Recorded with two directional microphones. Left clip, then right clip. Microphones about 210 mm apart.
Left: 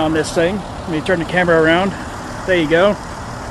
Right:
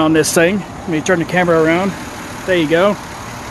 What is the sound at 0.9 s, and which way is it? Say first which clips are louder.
Speech: right 2 dB; 30° right (ahead or behind).